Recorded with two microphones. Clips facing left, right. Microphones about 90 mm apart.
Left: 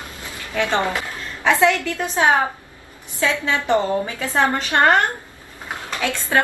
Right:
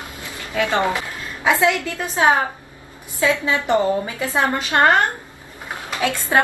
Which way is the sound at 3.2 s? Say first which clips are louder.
Right 2 dB; 20° right (ahead or behind).